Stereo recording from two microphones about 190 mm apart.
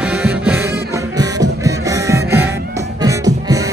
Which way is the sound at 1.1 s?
20° right (ahead or behind).